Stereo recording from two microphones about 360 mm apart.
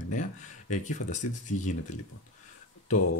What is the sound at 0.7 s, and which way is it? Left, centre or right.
Speech, centre.